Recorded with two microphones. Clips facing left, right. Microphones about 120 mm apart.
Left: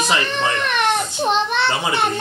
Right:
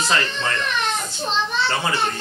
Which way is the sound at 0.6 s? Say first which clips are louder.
Left 5 dB; 60° left (ahead or behind).